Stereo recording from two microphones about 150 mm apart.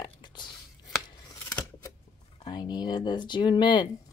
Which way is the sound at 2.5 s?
30° left (ahead or behind).